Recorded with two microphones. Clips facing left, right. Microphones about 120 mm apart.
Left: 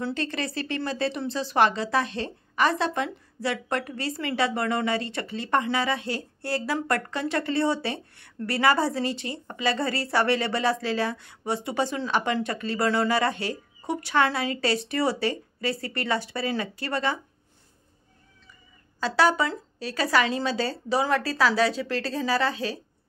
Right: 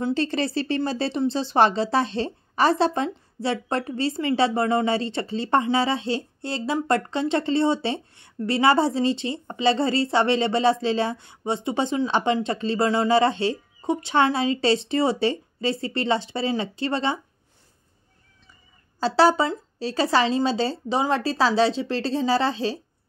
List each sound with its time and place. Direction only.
0.0 s a woman's voice: 30° right (ahead or behind)
18.9 s a woman's voice: 30° right (ahead or behind)